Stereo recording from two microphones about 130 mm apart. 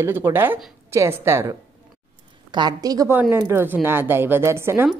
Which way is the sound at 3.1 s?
15° right (ahead or behind).